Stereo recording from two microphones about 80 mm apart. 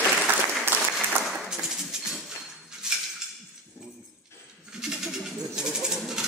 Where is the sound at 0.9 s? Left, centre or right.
Centre.